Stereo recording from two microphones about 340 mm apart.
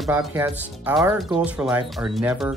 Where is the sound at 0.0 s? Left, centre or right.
Centre.